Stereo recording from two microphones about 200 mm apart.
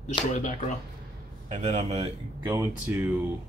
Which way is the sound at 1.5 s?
35° right (ahead or behind).